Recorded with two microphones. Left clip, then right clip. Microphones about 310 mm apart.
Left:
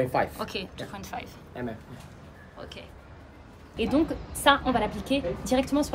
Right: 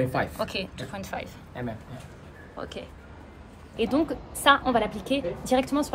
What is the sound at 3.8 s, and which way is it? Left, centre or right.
A woman's voice, centre.